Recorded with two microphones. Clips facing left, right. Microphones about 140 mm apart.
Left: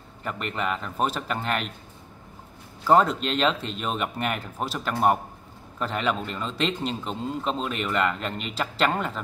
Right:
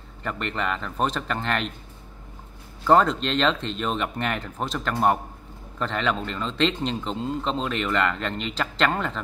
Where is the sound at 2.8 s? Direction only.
5° left (ahead or behind).